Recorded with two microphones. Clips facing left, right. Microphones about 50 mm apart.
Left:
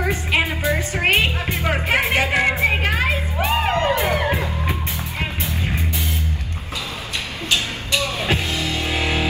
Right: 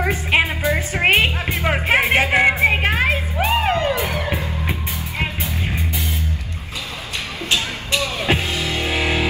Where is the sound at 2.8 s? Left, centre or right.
Right.